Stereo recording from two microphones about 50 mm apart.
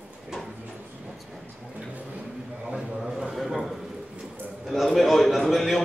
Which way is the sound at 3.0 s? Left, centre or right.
Centre.